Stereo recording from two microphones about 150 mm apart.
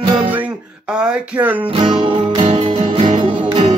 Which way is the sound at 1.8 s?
35° right (ahead or behind).